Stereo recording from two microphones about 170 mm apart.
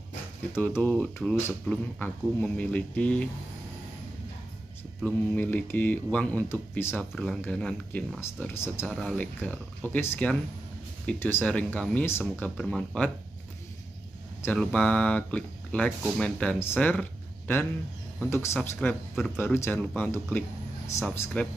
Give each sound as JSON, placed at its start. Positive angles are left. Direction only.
{"t": 0.8, "sound": "speech", "side_deg": 0}
{"t": 5.0, "sound": "speech", "side_deg": 10}
{"t": 8.9, "sound": "speech", "side_deg": 5}
{"t": 14.4, "sound": "speech", "side_deg": 10}
{"t": 18.2, "sound": "speech", "side_deg": 15}
{"t": 20.3, "sound": "a sound", "side_deg": 15}
{"t": 21.1, "sound": "speech", "side_deg": 10}